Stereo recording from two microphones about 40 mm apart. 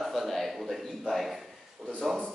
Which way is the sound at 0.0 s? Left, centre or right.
Centre.